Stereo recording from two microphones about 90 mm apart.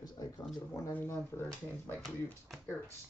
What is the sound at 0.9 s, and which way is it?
Speech, 25° left (ahead or behind).